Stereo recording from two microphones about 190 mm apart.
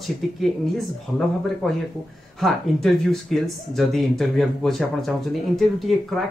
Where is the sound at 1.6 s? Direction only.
5° left (ahead or behind).